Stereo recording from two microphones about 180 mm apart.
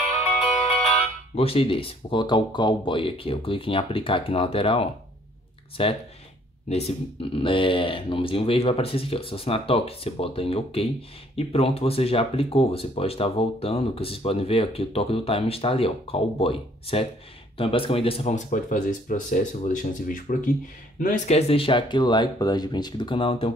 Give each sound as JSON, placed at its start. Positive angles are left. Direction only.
{"t": 1.3, "sound": "speech", "side_deg": 30}